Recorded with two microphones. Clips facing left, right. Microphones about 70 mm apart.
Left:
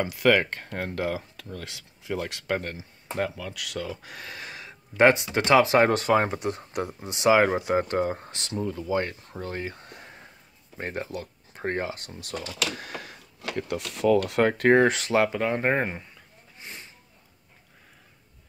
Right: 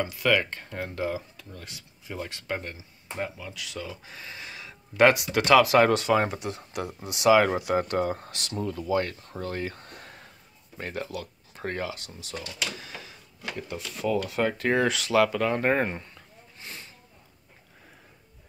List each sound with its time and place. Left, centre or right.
0.0 s speech: left
7.1 s speech: left
8.5 s speech: centre
9.4 s a sound: centre
10.8 s speech: left
12.7 s a sound: left
13.4 s speech: left
14.8 s speech: left; by 16.1 s centre